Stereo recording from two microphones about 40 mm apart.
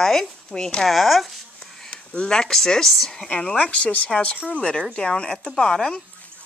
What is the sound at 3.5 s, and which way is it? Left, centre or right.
Speech, left.